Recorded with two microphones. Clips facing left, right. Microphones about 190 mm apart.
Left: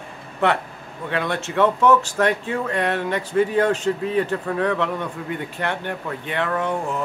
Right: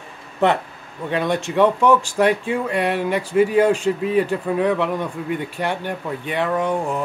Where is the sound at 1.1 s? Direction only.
15° right (ahead or behind).